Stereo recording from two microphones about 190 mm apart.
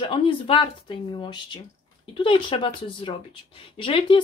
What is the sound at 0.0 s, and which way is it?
A woman's voice, 30° left (ahead or behind).